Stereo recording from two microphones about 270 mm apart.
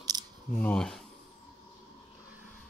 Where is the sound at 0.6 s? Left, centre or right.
Centre.